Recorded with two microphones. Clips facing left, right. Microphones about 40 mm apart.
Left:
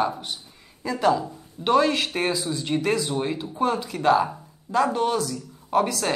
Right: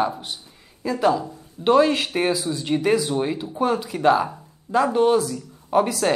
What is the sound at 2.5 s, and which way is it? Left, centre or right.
Speech, centre.